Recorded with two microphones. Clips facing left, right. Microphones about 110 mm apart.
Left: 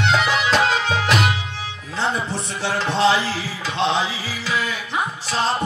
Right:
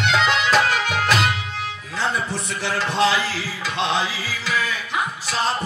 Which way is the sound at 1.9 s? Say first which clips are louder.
Left 1 dB; 20° left (ahead or behind).